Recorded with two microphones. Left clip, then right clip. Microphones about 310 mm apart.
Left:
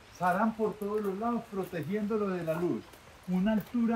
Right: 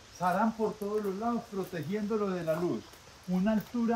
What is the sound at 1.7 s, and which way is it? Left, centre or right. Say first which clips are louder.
Speech: left 1 dB; centre.